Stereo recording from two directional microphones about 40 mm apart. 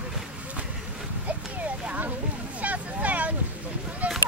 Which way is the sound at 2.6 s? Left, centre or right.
Right.